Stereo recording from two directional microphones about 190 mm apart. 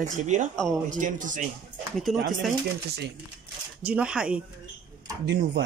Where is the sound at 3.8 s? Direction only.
5° right (ahead or behind).